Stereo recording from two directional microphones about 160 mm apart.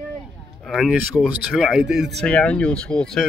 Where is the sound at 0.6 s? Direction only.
5° right (ahead or behind).